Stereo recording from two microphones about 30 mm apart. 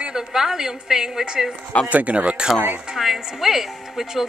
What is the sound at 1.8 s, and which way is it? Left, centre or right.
Speech, right.